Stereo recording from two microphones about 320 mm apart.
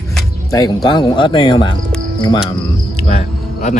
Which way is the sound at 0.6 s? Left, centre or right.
Centre.